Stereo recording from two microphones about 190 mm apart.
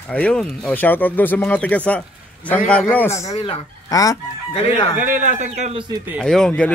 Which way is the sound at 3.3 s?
35° left (ahead or behind).